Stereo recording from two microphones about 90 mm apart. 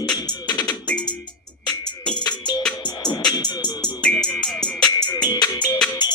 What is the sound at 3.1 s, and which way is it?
Music, 50° left (ahead or behind).